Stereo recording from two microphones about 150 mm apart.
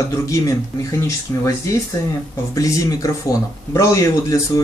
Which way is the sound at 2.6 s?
20° left (ahead or behind).